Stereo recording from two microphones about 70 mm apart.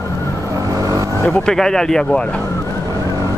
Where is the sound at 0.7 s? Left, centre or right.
Right.